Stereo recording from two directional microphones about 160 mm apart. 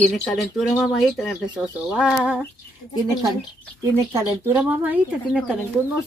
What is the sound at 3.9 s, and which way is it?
Speech, 15° right (ahead or behind).